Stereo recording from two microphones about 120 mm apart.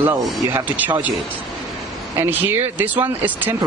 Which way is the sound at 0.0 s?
15° right (ahead or behind).